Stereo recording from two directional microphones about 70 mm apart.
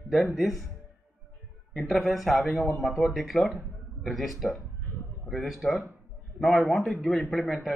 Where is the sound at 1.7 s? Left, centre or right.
Centre.